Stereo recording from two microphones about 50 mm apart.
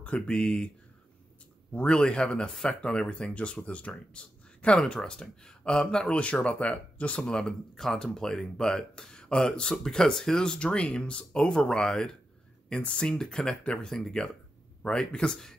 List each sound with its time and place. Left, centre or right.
0.0 s speech: left
1.7 s speech: left
4.1 s a sound: left
4.7 s speech: centre
7.2 s speech: centre
14.8 s speech: centre